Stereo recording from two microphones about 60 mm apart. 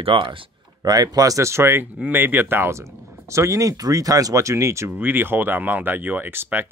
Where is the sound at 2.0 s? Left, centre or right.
Right.